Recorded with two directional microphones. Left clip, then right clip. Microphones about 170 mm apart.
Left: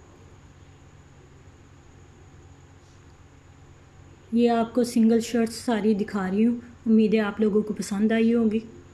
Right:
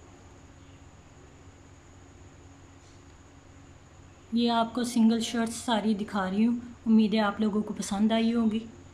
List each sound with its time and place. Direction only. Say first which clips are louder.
4.3 s a woman's voice: left 4 dB; 10° left (ahead or behind)